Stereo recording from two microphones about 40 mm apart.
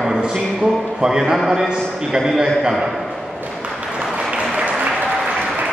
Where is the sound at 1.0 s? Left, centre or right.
Centre.